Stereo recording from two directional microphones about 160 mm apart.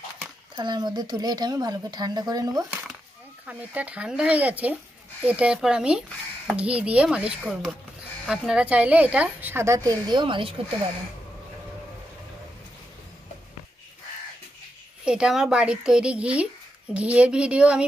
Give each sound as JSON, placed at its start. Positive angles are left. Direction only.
{"t": 0.6, "sound": "speech", "side_deg": -25}
{"t": 3.4, "sound": "a woman's voice", "side_deg": -10}
{"t": 15.0, "sound": "a woman's voice", "side_deg": -5}